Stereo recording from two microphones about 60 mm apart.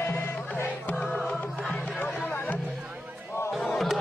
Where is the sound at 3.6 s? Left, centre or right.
Centre.